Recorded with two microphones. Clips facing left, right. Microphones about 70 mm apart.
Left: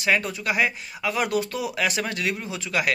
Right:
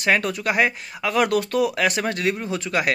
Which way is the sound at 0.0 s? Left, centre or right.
Right.